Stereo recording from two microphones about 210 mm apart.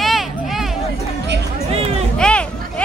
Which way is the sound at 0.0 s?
Centre (ahead or behind).